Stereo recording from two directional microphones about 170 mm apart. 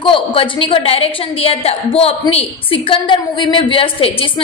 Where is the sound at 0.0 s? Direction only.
30° left (ahead or behind).